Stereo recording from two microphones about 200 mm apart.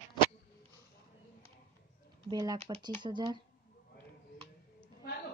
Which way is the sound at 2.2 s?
20° right (ahead or behind).